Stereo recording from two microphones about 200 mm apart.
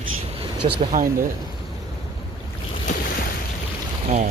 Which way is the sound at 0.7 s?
45° right (ahead or behind).